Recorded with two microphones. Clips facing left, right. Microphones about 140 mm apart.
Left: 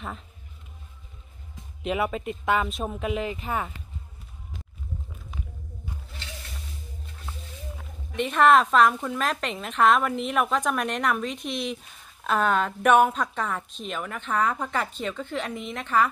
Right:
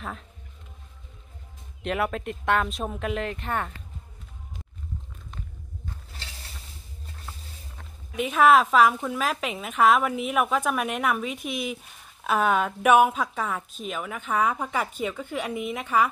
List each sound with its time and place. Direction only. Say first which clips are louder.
1.8 s speech: left 1 dB; 5° left (ahead or behind)
7.7 s speech: left 1 dB; 5° right (ahead or behind)